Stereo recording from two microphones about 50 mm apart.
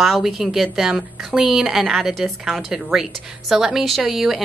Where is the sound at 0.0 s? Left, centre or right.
Centre.